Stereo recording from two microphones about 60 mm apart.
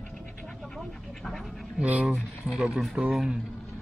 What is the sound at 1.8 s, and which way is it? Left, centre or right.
Speech, right.